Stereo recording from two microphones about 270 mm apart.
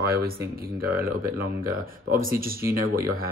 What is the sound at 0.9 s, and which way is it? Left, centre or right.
Speech, centre.